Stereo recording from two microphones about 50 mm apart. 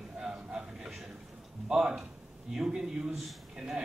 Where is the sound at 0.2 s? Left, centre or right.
Centre.